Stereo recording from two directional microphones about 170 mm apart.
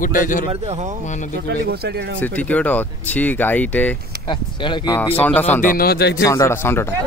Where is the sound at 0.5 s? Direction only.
40° right (ahead or behind).